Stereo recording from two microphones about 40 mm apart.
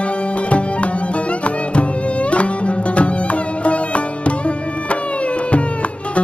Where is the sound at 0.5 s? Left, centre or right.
Left.